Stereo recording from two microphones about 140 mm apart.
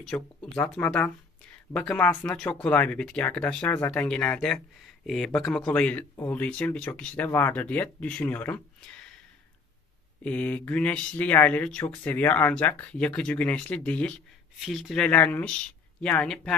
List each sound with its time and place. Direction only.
0.1 s speech: 10° left (ahead or behind)
10.2 s speech: 10° left (ahead or behind)